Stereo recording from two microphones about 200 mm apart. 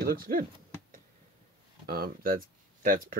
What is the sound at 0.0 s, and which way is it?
Speech, 45° right (ahead or behind).